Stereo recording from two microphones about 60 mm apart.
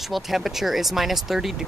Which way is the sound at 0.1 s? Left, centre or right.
Centre.